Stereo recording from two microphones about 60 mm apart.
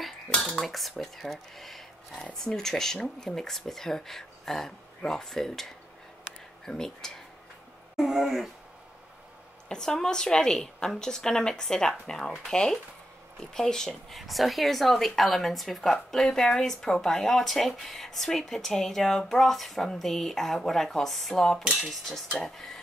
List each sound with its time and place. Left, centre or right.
0.3 s cutlery: centre
0.6 s a woman's voice: centre
7.9 s speech: centre
9.7 s speech: centre
14.1 s a woman's voice: centre